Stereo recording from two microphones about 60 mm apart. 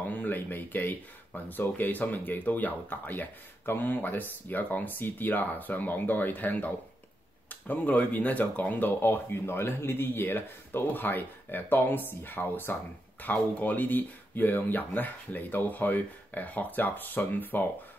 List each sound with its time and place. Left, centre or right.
0.0 s speech: left